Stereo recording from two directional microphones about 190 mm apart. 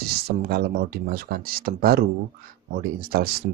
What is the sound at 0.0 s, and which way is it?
Speech, 55° right (ahead or behind).